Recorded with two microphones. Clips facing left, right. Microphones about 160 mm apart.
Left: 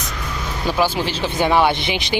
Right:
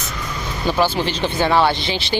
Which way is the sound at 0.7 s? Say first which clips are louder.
Right 1 dB; 5° left (ahead or behind).